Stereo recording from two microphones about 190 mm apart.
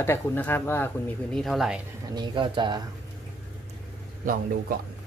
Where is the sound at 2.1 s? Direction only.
25° right (ahead or behind).